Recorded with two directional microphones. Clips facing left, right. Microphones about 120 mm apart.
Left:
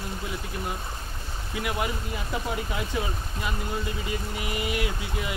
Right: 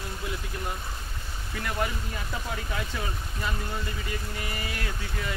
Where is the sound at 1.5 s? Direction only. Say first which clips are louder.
Left 1 dB; 10° left (ahead or behind).